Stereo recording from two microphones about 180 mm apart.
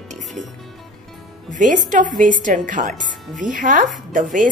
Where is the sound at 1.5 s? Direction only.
45° right (ahead or behind).